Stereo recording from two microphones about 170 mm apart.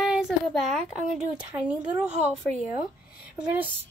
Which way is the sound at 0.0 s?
5° right (ahead or behind).